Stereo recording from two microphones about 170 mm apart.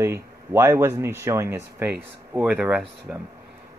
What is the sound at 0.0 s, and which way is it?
Speech, 15° right (ahead or behind).